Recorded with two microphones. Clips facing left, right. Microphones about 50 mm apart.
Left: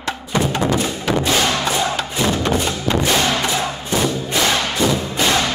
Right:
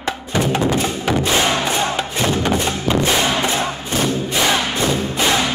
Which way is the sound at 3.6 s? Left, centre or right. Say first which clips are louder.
Even; right.